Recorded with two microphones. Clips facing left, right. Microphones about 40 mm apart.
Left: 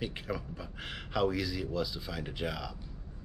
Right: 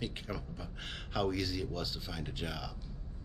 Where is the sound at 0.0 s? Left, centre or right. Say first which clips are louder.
Left 3 dB; centre.